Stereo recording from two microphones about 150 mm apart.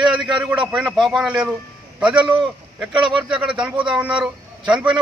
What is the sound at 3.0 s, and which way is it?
Speech, 30° right (ahead or behind).